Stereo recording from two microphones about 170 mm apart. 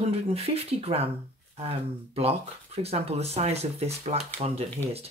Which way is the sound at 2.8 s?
40° right (ahead or behind).